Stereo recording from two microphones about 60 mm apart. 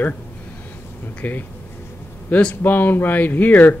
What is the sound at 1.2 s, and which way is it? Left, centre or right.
Speech, left.